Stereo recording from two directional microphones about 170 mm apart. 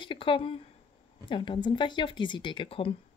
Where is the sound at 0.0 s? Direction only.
30° left (ahead or behind).